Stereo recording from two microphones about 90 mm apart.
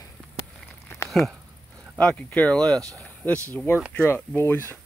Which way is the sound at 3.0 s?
20° left (ahead or behind).